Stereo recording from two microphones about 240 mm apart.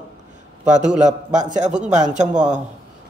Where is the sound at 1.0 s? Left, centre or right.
Right.